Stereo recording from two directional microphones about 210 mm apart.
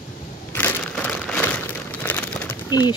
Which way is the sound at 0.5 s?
10° left (ahead or behind).